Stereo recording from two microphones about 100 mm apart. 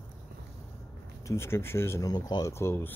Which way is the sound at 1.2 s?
25° left (ahead or behind).